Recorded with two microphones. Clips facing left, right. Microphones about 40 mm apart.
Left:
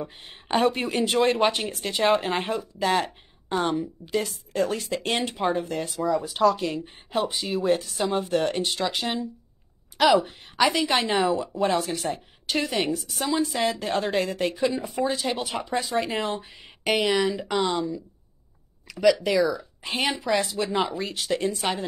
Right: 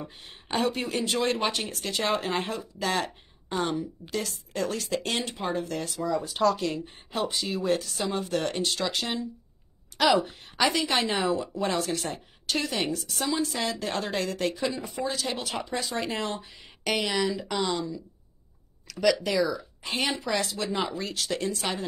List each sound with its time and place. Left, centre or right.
0.2 s speech: left
1.7 s a woman's voice: centre
5.9 s speech: centre
13.6 s speech: left
13.8 s speech: centre